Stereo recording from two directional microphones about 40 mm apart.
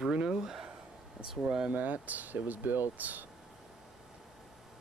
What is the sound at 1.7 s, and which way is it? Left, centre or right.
Speech, right.